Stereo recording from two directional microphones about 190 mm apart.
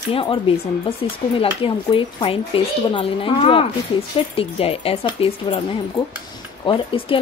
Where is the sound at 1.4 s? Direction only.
30° left (ahead or behind).